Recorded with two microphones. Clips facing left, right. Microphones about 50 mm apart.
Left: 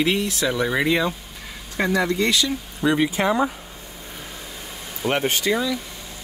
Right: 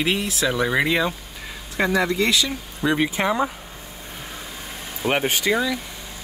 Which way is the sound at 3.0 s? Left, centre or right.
Right.